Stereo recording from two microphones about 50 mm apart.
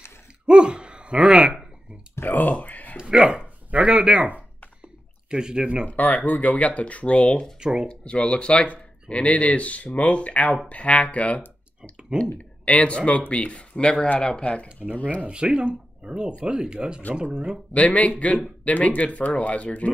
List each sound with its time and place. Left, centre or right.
0.5 s a sound: centre
2.1 s a sound: left
3.0 s a sound: centre
5.3 s speech: centre
5.9 s speech: left
7.6 s speech: centre
7.9 s speech: left
15.2 s speech: right
17.7 s speech: left